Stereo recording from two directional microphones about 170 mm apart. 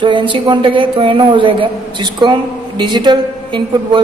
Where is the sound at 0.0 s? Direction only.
30° right (ahead or behind).